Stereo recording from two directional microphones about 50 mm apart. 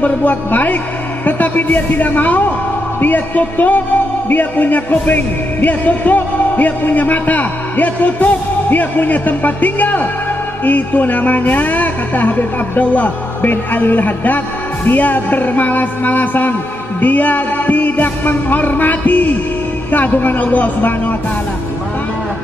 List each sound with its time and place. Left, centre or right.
0.0 s speech: left